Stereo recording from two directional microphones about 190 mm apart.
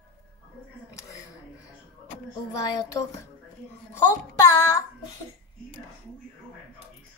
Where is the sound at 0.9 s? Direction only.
20° left (ahead or behind).